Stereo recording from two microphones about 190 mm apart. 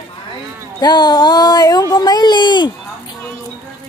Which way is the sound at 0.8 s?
20° left (ahead or behind).